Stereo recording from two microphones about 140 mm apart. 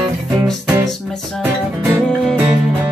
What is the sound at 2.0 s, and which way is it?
Music, 5° left (ahead or behind).